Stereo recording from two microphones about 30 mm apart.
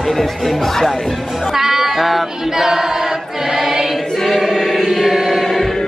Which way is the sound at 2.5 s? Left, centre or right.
Centre.